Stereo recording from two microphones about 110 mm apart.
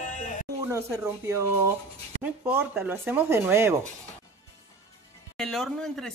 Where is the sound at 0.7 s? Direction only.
25° right (ahead or behind).